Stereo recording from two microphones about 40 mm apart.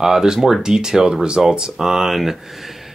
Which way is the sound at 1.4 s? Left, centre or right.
Centre.